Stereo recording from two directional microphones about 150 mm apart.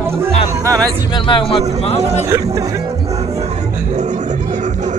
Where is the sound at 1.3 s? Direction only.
35° left (ahead or behind).